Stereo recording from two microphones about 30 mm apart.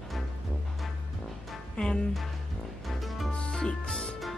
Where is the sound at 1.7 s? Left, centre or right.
Left.